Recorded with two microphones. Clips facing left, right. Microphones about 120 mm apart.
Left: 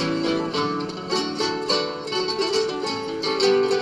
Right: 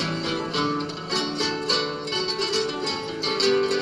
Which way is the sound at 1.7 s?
45° left (ahead or behind).